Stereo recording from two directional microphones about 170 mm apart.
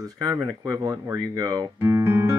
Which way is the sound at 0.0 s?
25° right (ahead or behind).